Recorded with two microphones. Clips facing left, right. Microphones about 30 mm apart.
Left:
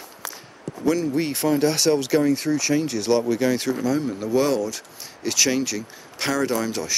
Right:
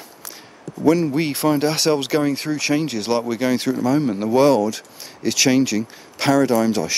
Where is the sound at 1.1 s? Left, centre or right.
Right.